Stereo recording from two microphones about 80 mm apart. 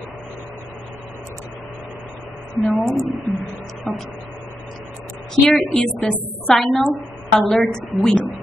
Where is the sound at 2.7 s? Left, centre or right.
Centre.